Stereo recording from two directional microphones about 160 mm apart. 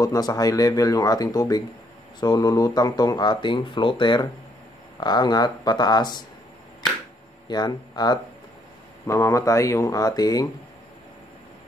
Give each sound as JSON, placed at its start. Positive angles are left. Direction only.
{"t": 0.0, "sound": "speech", "side_deg": 25}
{"t": 7.4, "sound": "speech", "side_deg": 25}